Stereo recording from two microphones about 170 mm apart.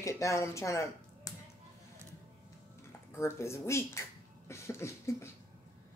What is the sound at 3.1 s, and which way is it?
Speech, 15° left (ahead or behind).